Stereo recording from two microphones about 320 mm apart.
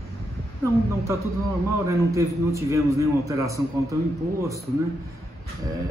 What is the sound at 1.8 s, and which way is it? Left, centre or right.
A man's voice, centre.